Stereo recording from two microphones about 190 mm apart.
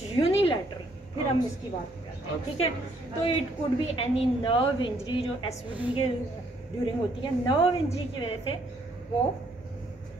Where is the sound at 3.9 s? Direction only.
30° left (ahead or behind).